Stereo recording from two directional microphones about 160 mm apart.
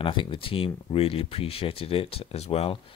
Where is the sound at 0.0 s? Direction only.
30° left (ahead or behind).